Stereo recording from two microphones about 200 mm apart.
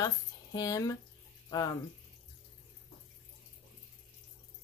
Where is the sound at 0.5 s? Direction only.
15° left (ahead or behind).